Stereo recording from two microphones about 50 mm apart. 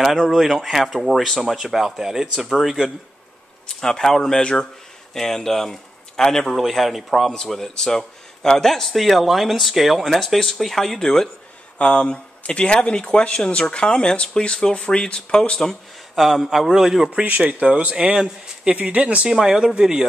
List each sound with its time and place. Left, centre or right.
0.0 s speech: centre
3.6 s speech: centre
16.2 s speech: centre
17.5 s speech: right
18.7 s speech: right
19.2 s speech: centre